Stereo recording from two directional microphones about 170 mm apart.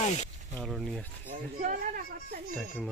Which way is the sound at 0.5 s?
Centre (ahead or behind).